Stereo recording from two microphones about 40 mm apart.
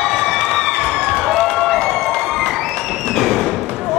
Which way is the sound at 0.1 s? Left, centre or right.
Centre.